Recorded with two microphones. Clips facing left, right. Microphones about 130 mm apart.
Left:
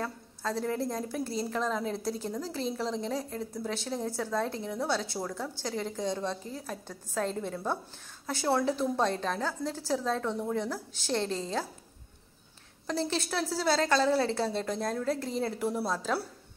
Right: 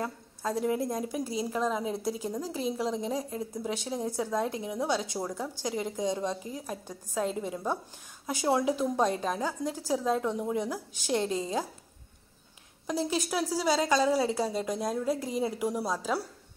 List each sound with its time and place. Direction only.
0.0 s a woman's voice: 15° right (ahead or behind)
12.8 s a woman's voice: 10° right (ahead or behind)